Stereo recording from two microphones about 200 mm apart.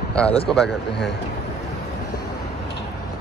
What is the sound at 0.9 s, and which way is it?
Speech, 60° left (ahead or behind).